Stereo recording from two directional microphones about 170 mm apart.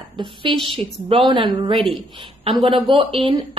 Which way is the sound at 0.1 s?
30° right (ahead or behind).